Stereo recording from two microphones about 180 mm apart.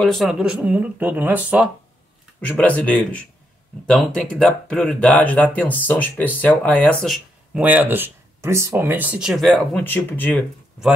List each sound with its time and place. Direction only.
0.0 s speech: centre (ahead or behind)
2.4 s speech: 10° left (ahead or behind)
7.5 s speech: 10° right (ahead or behind)
9.8 s speech: 10° left (ahead or behind)